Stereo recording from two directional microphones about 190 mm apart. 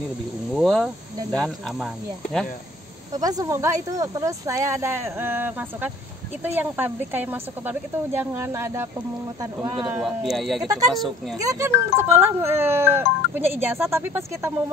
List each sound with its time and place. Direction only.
0.5 s speech: centre (ahead or behind)
3.1 s speech: 20° right (ahead or behind)
10.0 s speech: centre (ahead or behind)
11.3 s speech: 15° right (ahead or behind)